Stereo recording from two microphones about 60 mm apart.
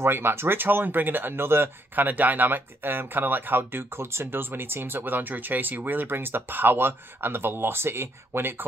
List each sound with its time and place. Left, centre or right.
0.0 s speech: right